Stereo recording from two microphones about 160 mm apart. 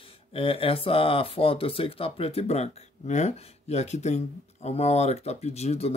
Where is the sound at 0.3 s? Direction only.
35° left (ahead or behind).